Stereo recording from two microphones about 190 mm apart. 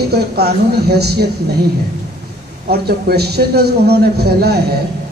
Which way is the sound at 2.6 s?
55° right (ahead or behind).